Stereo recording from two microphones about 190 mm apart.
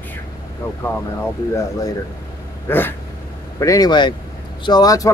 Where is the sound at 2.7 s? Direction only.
10° left (ahead or behind).